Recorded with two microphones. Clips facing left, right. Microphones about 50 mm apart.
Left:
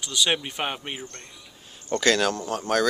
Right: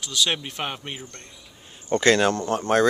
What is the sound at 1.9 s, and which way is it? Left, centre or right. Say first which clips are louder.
Speech: right 3 dB; right.